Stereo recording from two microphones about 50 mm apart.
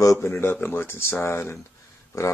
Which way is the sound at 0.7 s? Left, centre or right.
Left.